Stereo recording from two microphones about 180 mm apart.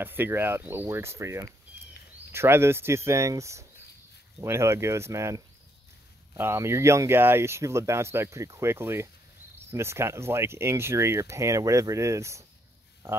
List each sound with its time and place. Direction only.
0.0 s speech: 10° right (ahead or behind)